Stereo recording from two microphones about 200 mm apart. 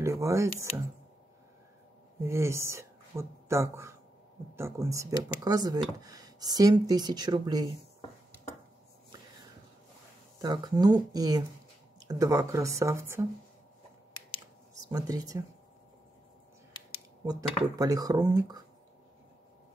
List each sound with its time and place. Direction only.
0.0 s speech: 15° right (ahead or behind)
2.1 s speech: 15° right (ahead or behind)
10.4 s speech: 20° right (ahead or behind)
14.7 s speech: 15° right (ahead or behind)
17.2 s speech: 15° right (ahead or behind)